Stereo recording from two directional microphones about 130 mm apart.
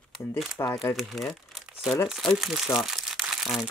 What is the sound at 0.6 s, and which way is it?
Speech, 25° left (ahead or behind).